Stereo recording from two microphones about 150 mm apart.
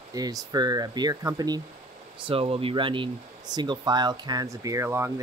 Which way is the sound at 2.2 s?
40° right (ahead or behind).